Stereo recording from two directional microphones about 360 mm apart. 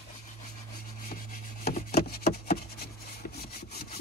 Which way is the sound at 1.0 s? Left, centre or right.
Left.